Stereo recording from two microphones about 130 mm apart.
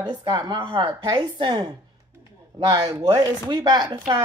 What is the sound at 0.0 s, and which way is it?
Speech, 30° right (ahead or behind).